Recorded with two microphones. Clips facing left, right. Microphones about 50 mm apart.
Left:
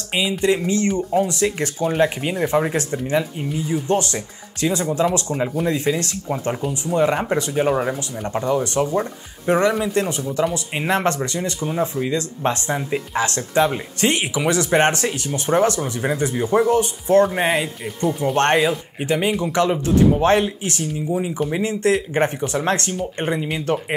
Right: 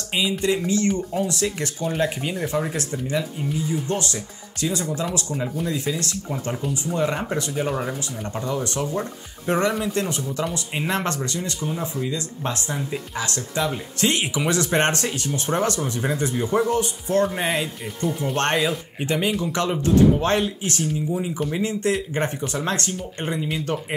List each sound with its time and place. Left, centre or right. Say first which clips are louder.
0.1 s speech: left 3 dB; left
17.3 s speech: left 4 dB; centre
19.4 s speech: left 4 dB; left